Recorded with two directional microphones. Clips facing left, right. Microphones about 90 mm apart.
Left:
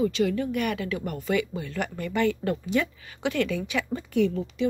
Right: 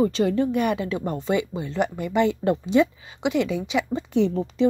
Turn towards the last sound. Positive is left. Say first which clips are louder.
# right 3 dB
turn(degrees=-30)  # may be behind; listen again after turning